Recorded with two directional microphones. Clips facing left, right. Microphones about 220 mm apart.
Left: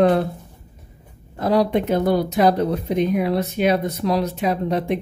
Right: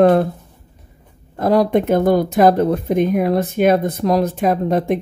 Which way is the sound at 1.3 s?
50° right (ahead or behind).